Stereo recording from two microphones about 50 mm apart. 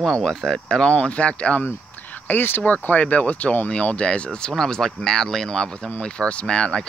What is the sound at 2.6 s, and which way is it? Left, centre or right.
Speech, left.